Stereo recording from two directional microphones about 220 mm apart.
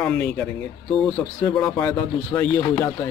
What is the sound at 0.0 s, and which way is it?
Speech, 5° left (ahead or behind).